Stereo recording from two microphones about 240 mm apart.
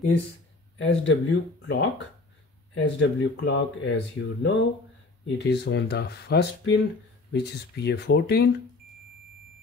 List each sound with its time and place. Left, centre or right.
0.7 s speech: left